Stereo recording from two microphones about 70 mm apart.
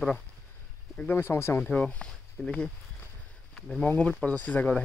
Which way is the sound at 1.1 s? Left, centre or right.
Left.